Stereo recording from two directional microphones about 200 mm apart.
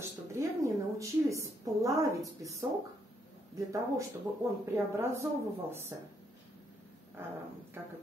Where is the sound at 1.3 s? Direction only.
15° right (ahead or behind).